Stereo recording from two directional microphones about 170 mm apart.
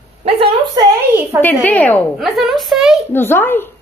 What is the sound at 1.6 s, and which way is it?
Speech, 10° left (ahead or behind).